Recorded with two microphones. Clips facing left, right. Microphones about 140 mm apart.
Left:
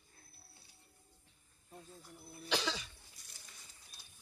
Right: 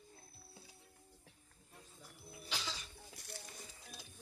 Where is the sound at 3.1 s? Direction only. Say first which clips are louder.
Right 12 dB; 65° right (ahead or behind).